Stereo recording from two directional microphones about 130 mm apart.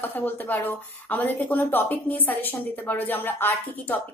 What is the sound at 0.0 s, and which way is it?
A woman's voice, 15° left (ahead or behind).